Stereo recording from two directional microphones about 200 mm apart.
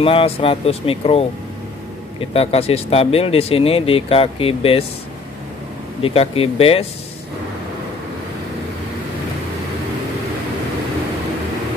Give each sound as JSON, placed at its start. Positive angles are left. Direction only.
{"t": 0.0, "sound": "speech", "side_deg": 30}
{"t": 6.0, "sound": "speech", "side_deg": 30}